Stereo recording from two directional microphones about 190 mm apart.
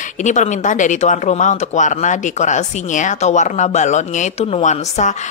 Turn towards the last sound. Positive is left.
turn(degrees=40)  # may be behind; listen again after turning